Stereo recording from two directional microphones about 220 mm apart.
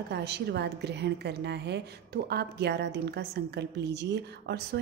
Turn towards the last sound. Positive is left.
turn(degrees=-50)  # may be behind; listen again after turning